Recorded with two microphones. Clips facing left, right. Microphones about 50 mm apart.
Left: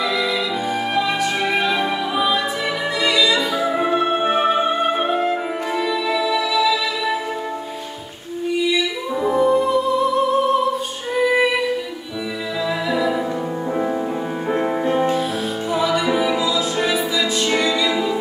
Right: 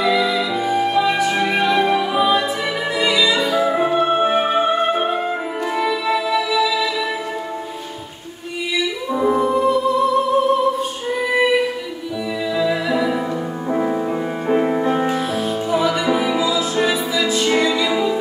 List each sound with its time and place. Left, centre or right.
0.0 s music: centre
9.1 s music: centre
12.5 s music: centre